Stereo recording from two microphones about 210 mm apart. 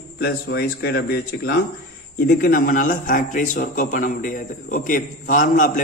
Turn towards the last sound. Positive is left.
turn(degrees=35)  # may be behind; listen again after turning